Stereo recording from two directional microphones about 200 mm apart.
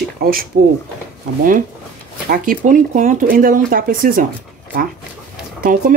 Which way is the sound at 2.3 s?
45° right (ahead or behind).